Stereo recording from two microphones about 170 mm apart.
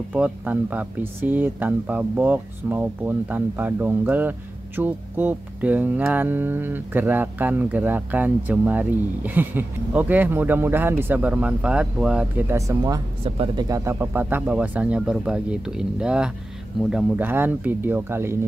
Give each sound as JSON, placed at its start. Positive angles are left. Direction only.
{"t": 0.1, "sound": "speech", "side_deg": -10}
{"t": 13.2, "sound": "speech", "side_deg": -35}
{"t": 13.7, "sound": "speech", "side_deg": -20}